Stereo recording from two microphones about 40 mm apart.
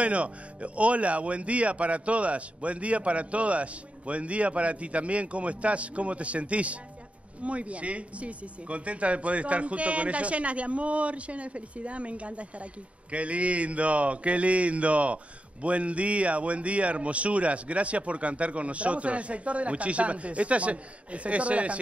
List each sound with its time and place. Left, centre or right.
0.0 s speech: right